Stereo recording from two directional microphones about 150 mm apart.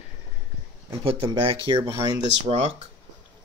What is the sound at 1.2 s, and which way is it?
Speech, 35° right (ahead or behind).